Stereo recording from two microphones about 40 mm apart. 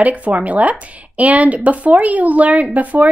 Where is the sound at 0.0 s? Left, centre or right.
Right.